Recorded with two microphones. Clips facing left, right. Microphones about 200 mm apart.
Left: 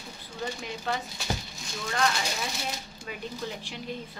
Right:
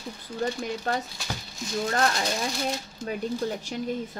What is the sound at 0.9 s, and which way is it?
A woman's voice, 40° right (ahead or behind).